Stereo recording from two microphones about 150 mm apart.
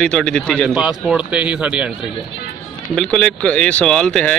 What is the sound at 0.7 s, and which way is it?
Speech, 5° right (ahead or behind).